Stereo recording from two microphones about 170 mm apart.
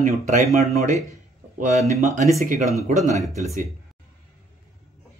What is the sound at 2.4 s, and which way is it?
Speech, 55° right (ahead or behind).